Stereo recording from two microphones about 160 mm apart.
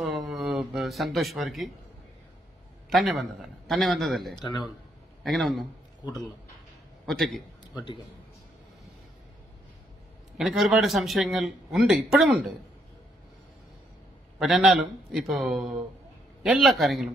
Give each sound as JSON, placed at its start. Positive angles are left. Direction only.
{"t": 0.3, "sound": "speech", "side_deg": 0}
{"t": 2.9, "sound": "a man's voice", "side_deg": 0}
{"t": 4.4, "sound": "speech", "side_deg": 25}
{"t": 5.2, "sound": "a man's voice", "side_deg": 0}
{"t": 7.1, "sound": "a man's voice", "side_deg": 0}
{"t": 7.7, "sound": "a man's voice", "side_deg": 30}
{"t": 10.3, "sound": "a man's voice", "side_deg": -5}
{"t": 14.4, "sound": "a man's voice", "side_deg": -5}